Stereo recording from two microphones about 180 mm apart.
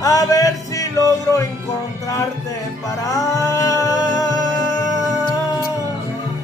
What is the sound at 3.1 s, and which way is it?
Music, 20° left (ahead or behind).